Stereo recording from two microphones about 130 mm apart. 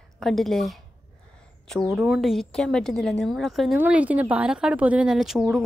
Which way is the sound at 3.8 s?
10° right (ahead or behind).